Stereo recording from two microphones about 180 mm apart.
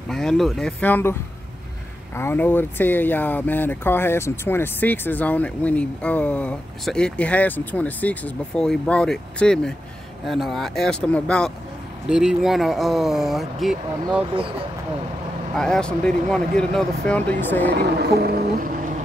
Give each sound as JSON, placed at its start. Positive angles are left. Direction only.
{"t": 0.1, "sound": "speech", "side_deg": 0}
{"t": 2.1, "sound": "speech", "side_deg": 10}
{"t": 15.5, "sound": "speech", "side_deg": 5}
{"t": 17.6, "sound": "speech", "side_deg": -65}